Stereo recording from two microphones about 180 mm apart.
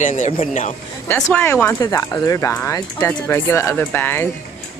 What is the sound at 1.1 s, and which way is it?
Speech, 10° left (ahead or behind).